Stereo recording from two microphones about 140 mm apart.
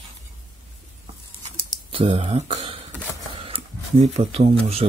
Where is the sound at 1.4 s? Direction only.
40° right (ahead or behind).